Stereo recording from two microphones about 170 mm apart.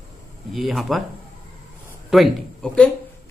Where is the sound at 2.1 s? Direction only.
Centre (ahead or behind).